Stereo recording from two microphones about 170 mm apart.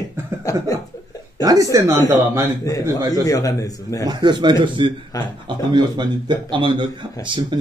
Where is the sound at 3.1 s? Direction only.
20° left (ahead or behind).